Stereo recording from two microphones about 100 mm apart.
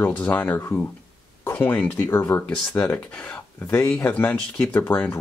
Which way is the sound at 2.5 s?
10° left (ahead or behind).